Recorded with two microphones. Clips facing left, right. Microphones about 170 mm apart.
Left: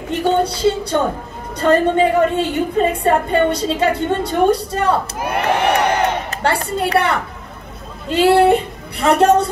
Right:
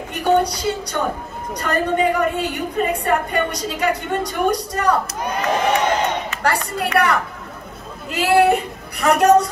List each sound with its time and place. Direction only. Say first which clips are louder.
0.1 s a woman's voice: left 1 dB; 25° left (ahead or behind)
5.3 s crowd: left 3 dB; 65° left (ahead or behind)
6.4 s a woman's voice: left 3 dB; 25° left (ahead or behind)